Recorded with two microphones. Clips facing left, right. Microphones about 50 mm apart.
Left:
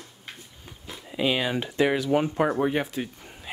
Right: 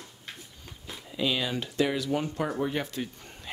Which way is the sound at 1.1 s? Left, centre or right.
Left.